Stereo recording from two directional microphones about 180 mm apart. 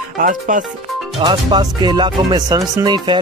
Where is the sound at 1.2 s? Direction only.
25° right (ahead or behind).